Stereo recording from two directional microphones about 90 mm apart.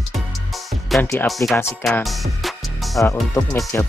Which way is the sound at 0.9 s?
Centre (ahead or behind).